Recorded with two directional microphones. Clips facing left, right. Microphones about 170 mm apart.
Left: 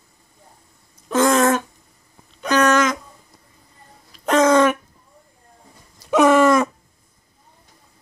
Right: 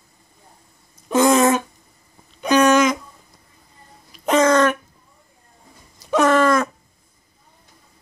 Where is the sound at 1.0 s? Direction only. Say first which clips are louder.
Right 1 dB; 10° right (ahead or behind).